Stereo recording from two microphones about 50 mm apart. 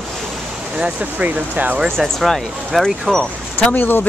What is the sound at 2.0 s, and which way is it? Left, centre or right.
A child's voice, centre.